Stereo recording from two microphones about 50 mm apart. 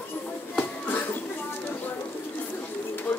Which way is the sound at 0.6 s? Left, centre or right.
Left.